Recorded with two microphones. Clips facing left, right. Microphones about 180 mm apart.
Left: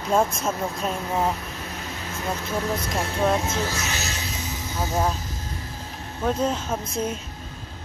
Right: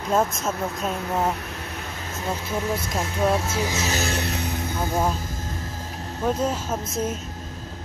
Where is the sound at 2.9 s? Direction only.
5° right (ahead or behind).